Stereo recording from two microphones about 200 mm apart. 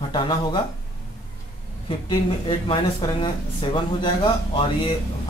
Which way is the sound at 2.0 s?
20° left (ahead or behind).